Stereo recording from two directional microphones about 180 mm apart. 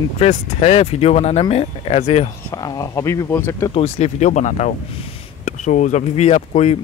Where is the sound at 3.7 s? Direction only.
35° left (ahead or behind).